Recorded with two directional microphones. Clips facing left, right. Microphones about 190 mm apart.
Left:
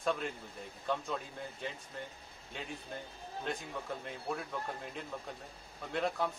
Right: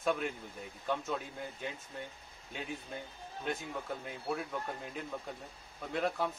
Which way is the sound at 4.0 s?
5° right (ahead or behind).